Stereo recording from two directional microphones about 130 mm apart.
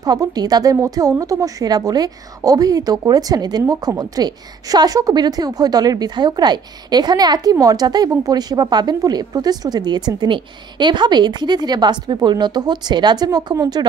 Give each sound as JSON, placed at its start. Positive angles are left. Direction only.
{"t": 0.0, "sound": "a woman's voice", "side_deg": -30}